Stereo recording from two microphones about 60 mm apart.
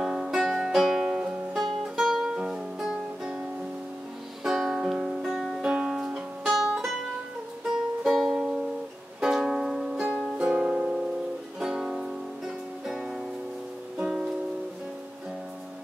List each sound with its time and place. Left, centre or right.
0.0 s music: centre
5.6 s music: centre
7.6 s music: centre